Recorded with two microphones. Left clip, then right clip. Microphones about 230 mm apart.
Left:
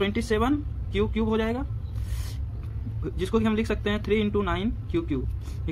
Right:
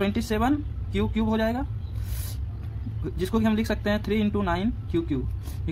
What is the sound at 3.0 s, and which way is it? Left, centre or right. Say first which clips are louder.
Speech: left 1 dB; centre.